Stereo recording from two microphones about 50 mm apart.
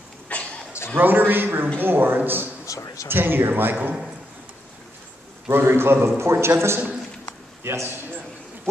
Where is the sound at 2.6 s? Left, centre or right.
Left.